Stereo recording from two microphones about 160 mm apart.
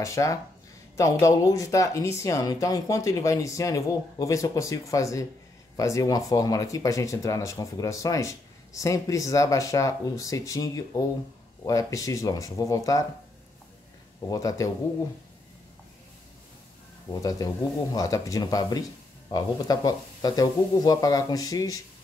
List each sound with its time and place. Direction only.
0.0 s speech: 20° left (ahead or behind)
14.3 s speech: 20° left (ahead or behind)
17.1 s speech: 20° left (ahead or behind)